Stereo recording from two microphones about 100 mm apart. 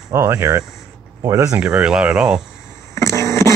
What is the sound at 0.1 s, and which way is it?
Speech, 30° right (ahead or behind).